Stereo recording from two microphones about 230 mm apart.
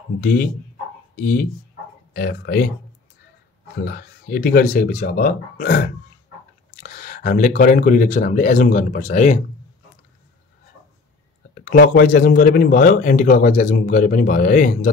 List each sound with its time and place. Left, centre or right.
0.2 s speech: left
3.8 s speech: left
11.5 s speech: left